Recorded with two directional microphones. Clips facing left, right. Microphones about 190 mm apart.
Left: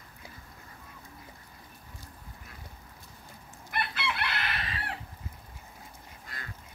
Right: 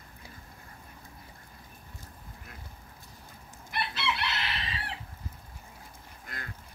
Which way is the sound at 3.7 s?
50° left (ahead or behind).